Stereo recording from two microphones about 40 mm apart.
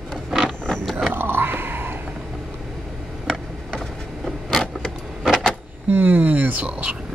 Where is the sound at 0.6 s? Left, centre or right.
Left.